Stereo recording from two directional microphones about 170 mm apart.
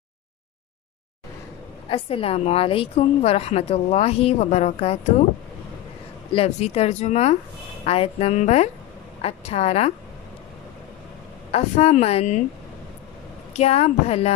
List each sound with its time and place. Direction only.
1.9 s a woman's voice: 35° left (ahead or behind)
6.3 s a woman's voice: 35° left (ahead or behind)
11.5 s a woman's voice: 40° left (ahead or behind)
13.5 s a woman's voice: 40° left (ahead or behind)